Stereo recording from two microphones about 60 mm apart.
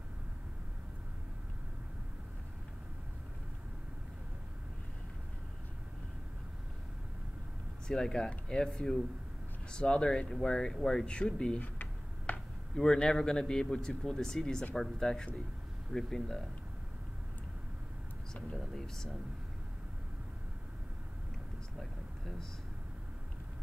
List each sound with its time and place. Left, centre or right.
7.9 s a man's voice: centre
11.6 s tick-tock: left
12.7 s a man's voice: centre
18.6 s speech: centre
21.7 s a sound: centre